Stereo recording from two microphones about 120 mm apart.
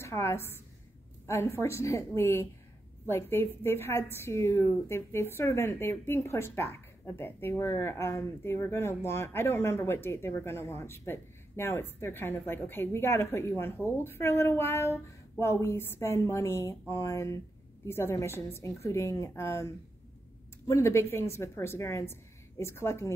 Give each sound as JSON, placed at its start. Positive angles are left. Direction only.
{"t": 0.0, "sound": "a woman's voice", "side_deg": 25}